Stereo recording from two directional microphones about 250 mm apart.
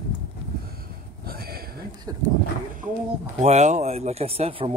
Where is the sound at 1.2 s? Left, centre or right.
Right.